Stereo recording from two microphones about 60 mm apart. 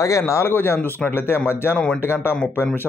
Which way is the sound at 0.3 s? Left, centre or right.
Left.